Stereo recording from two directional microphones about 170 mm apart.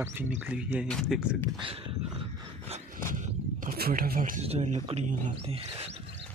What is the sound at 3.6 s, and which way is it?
Speech, 55° right (ahead or behind).